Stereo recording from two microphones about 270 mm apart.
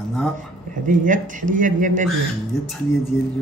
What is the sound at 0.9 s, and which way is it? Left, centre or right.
Speech, right.